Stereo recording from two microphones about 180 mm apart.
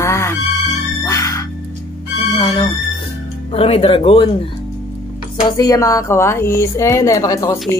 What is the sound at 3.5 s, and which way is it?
Speech, 30° left (ahead or behind).